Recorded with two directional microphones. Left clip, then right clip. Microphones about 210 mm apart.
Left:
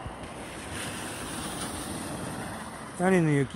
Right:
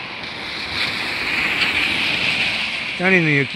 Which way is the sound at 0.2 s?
50° left (ahead or behind).